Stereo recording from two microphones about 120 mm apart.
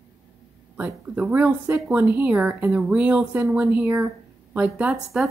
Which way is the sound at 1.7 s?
25° right (ahead or behind).